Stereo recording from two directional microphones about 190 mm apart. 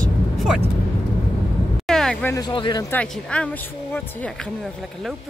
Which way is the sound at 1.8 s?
5° left (ahead or behind).